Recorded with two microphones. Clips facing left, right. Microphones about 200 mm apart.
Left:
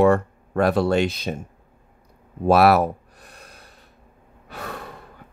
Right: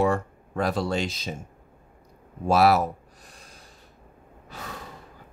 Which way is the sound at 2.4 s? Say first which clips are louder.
Left 4 dB; 60° left (ahead or behind).